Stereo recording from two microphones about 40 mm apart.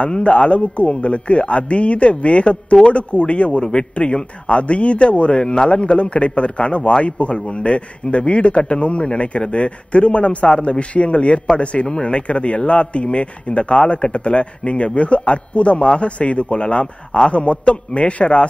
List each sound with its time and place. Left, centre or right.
0.0 s a man's voice: left